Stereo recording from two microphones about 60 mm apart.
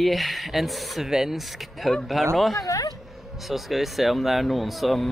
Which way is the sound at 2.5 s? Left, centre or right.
Left.